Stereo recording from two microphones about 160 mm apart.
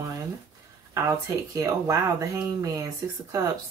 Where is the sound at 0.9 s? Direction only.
20° right (ahead or behind).